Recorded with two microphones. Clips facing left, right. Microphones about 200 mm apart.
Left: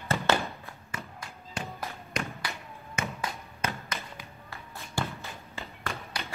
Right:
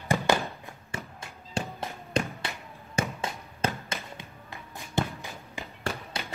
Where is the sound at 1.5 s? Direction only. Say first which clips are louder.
Right 4 dB; 30° right (ahead or behind).